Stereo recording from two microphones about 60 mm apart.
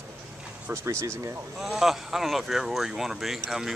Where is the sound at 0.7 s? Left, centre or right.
Right.